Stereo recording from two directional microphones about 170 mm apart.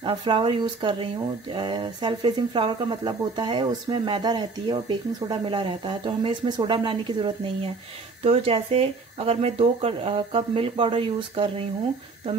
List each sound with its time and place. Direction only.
0.0 s speech: 30° right (ahead or behind)